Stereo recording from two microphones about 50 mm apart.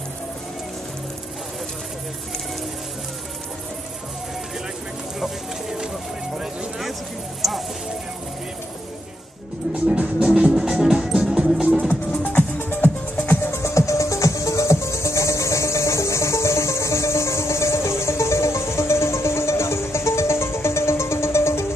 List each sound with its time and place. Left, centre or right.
5.2 s music: centre
6.3 s a sound: centre
9.9 s music: right
10.5 s music: centre
11.9 s music: left
13.6 s music: left